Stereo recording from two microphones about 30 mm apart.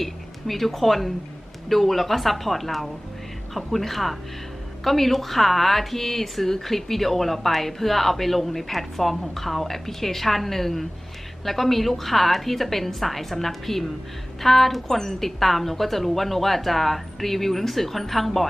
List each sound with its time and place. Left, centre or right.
0.0 s a woman's voice: centre
15.0 s speech: centre
15.2 s a woman's voice: centre